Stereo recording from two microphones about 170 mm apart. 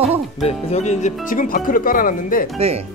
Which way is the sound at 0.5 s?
40° left (ahead or behind).